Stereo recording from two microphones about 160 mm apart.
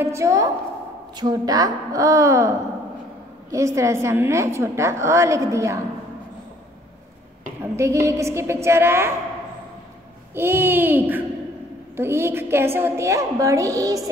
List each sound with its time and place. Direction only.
0.0 s a woman's voice: 20° right (ahead or behind)
7.7 s a woman's voice: 20° right (ahead or behind)
10.3 s a woman's voice: 15° right (ahead or behind)